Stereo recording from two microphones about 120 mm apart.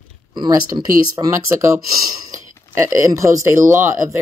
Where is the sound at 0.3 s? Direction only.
35° right (ahead or behind).